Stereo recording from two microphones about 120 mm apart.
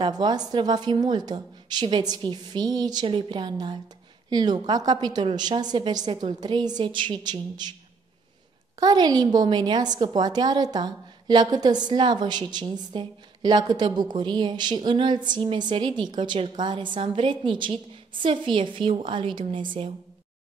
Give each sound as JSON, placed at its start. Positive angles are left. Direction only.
{"t": 0.0, "sound": "a woman's voice", "side_deg": -35}
{"t": 8.7, "sound": "a woman's voice", "side_deg": -35}